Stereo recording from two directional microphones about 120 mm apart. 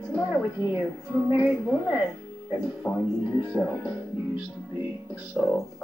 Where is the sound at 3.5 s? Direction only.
5° right (ahead or behind).